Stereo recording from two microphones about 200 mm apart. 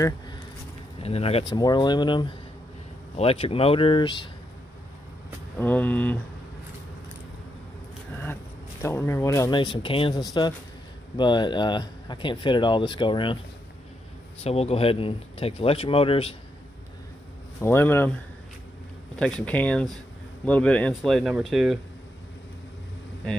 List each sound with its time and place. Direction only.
1.0 s speech: 30° left (ahead or behind)
5.6 s speech: 10° left (ahead or behind)
8.8 s speech: 15° left (ahead or behind)
14.4 s speech: 30° left (ahead or behind)
17.6 s speech: 10° left (ahead or behind)
19.1 s speech: 5° left (ahead or behind)